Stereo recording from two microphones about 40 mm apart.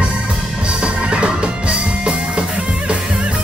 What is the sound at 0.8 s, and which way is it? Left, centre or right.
Music, right.